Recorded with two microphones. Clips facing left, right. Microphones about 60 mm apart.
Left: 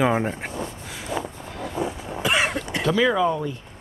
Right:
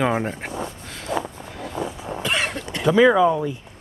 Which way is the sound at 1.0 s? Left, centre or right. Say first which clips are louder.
Right 3 dB; centre.